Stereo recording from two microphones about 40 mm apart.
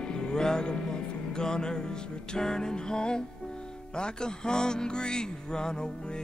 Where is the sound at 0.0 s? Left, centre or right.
Left.